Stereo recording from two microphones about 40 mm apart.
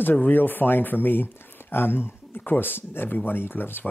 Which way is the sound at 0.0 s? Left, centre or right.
Left.